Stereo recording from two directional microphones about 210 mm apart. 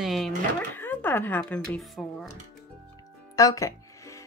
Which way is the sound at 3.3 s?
15° left (ahead or behind).